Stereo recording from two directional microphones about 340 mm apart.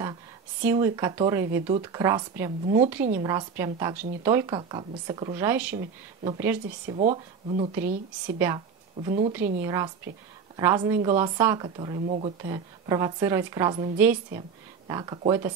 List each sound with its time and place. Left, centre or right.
0.7 s speech: centre